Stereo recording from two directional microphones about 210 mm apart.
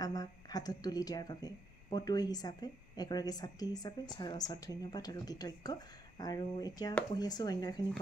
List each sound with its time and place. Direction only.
0.0 s speech: 15° left (ahead or behind)